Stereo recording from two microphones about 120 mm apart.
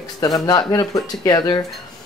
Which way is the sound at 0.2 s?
30° left (ahead or behind).